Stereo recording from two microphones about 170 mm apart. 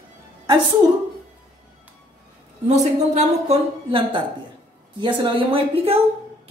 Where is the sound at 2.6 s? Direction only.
40° right (ahead or behind).